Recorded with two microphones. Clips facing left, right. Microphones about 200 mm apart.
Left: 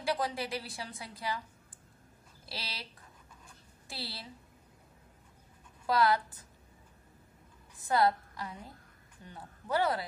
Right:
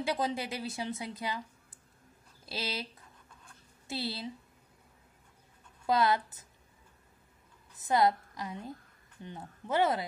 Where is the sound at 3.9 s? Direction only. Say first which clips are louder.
Right 7 dB; 25° right (ahead or behind).